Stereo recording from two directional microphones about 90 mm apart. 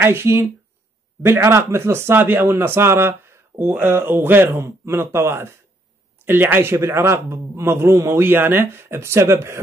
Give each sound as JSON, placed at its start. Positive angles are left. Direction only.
{"t": 0.0, "sound": "speech", "side_deg": -25}